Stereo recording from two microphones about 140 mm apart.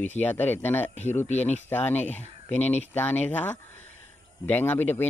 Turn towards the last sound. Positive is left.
turn(degrees=15)  # may be behind; listen again after turning